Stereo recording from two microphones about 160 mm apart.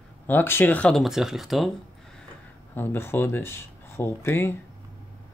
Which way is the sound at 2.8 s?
15° left (ahead or behind).